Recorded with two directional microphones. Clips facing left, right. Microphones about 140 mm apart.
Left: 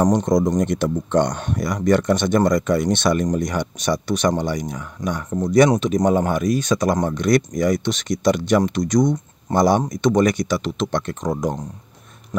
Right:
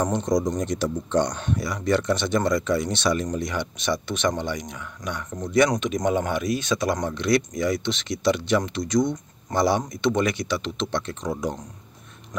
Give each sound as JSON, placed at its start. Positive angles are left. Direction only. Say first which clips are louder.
{"t": 0.1, "sound": "speech", "louder": "left 5 dB", "side_deg": 55}